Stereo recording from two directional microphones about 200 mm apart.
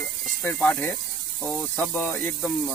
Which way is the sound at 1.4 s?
5° left (ahead or behind).